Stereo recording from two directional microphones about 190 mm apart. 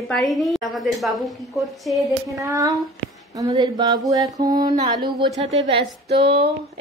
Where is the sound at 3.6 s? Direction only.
20° right (ahead or behind).